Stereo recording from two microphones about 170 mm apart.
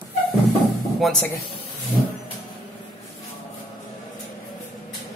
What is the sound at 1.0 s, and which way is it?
Speech, centre (ahead or behind).